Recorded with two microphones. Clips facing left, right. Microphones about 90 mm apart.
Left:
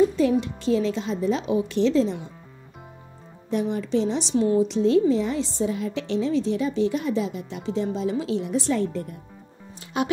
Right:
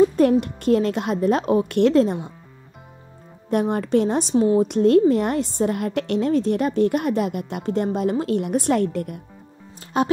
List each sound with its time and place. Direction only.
0.1 s a woman's voice: 55° right (ahead or behind)
3.4 s a woman's voice: 55° right (ahead or behind)
4.6 s a woman's voice: 60° right (ahead or behind)
9.9 s music: 40° right (ahead or behind)